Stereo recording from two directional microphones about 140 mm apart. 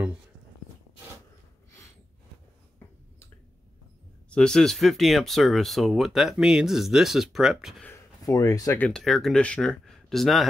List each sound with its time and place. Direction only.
4.3 s speech: 5° left (ahead or behind)
7.8 s speech: 20° left (ahead or behind)
8.7 s speech: 5° left (ahead or behind)